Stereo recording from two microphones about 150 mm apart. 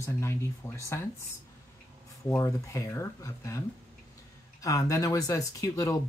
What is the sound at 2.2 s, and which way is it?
Speech, 20° left (ahead or behind).